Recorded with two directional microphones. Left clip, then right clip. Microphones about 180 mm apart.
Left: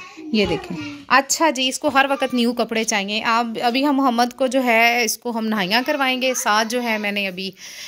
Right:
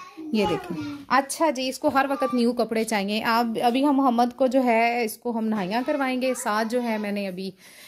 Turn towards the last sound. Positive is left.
turn(degrees=-5)  # may be behind; listen again after turning